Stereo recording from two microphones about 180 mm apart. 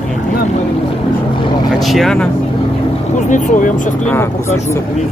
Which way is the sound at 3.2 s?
45° left (ahead or behind).